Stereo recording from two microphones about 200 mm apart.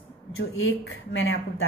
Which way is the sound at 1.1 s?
65° left (ahead or behind).